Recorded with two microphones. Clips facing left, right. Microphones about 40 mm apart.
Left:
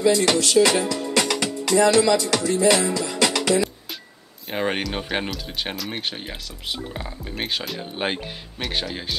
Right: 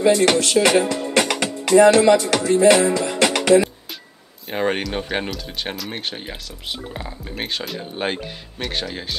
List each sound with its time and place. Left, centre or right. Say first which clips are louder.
0.0 s speech: right 3 dB; right
1.7 s music: right 5 dB; right
4.5 s speech: right 3 dB; centre